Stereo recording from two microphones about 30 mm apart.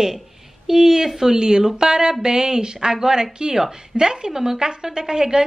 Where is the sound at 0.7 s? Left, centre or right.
Centre.